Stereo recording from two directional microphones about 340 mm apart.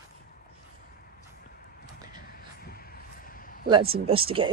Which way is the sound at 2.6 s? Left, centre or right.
Left.